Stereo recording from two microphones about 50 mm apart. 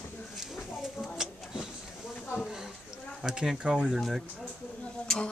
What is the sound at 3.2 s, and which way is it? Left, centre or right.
Speech, centre.